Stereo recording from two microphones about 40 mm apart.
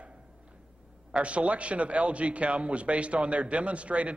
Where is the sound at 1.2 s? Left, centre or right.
Right.